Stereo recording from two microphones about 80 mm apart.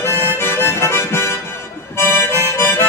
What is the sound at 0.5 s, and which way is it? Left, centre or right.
Harmonica, left.